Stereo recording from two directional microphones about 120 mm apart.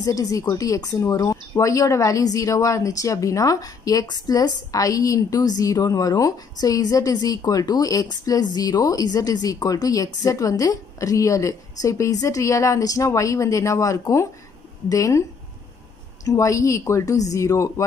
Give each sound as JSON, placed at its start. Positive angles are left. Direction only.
{"t": 0.0, "sound": "a woman's voice", "side_deg": 30}
{"t": 16.3, "sound": "a woman's voice", "side_deg": 25}